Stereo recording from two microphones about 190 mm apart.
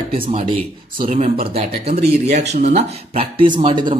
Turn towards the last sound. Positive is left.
turn(degrees=-25)  # may be behind; listen again after turning